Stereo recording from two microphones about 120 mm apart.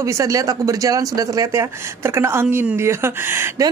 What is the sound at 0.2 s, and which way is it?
Speech, 30° right (ahead or behind).